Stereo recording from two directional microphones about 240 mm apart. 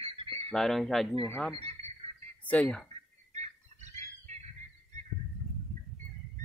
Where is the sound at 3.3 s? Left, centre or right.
Right.